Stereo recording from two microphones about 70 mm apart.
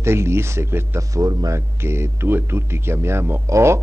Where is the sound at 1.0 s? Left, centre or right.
Right.